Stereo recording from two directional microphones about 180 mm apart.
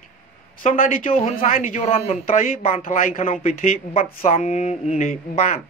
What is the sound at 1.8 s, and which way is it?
Speech, 35° left (ahead or behind).